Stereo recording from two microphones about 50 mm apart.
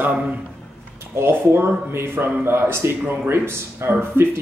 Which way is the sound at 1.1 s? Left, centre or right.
Right.